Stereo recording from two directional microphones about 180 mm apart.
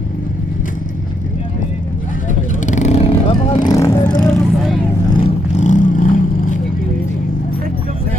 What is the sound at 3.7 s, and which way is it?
Vehicle, 20° left (ahead or behind).